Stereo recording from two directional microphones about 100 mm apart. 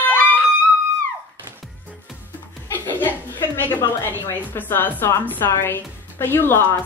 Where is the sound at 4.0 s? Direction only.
20° left (ahead or behind).